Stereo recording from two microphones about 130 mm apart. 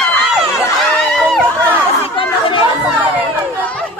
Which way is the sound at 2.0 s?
40° left (ahead or behind).